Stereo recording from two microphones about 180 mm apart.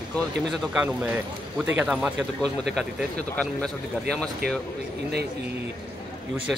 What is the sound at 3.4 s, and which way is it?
Speech, 5° left (ahead or behind).